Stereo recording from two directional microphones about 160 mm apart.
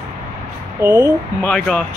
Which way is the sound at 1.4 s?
5° left (ahead or behind).